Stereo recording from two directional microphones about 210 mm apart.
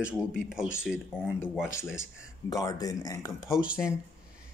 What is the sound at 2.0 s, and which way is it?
Speech, 15° left (ahead or behind).